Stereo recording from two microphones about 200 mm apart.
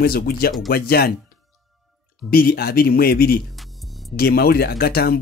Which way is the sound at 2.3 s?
50° left (ahead or behind).